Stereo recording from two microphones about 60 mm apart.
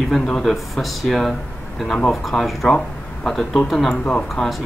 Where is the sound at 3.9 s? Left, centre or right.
Centre.